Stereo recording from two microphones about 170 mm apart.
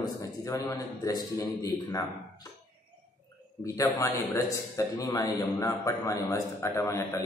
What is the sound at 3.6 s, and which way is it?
A man's voice, 15° left (ahead or behind).